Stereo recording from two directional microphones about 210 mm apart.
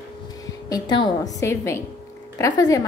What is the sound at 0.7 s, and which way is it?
A woman's voice, 20° left (ahead or behind).